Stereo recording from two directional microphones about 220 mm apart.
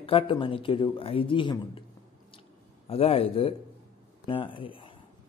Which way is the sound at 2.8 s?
25° left (ahead or behind).